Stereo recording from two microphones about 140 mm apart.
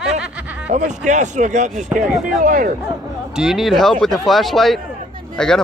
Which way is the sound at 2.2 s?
75° right (ahead or behind).